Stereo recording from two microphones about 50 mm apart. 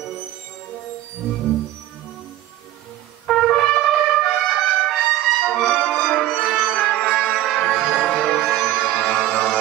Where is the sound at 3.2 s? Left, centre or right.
Centre.